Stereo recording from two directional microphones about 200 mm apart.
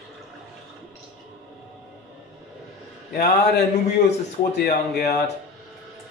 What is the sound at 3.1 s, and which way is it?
A man's voice, 55° left (ahead or behind).